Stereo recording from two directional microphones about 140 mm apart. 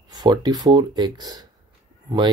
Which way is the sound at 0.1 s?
30° right (ahead or behind).